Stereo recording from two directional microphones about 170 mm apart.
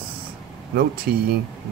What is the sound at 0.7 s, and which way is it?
Speech, 60° right (ahead or behind).